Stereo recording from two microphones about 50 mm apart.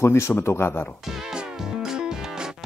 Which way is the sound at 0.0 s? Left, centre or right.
Left.